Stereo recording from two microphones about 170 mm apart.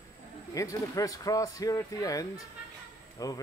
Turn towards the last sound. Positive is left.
turn(degrees=20)  # may be behind; listen again after turning